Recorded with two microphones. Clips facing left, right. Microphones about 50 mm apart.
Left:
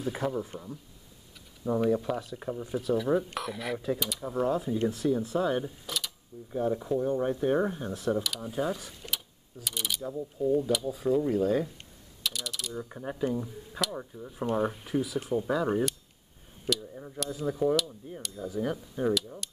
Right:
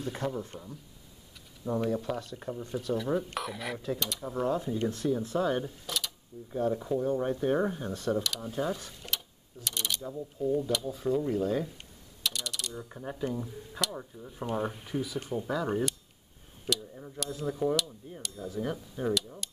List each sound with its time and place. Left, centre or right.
0.0 s speech: centre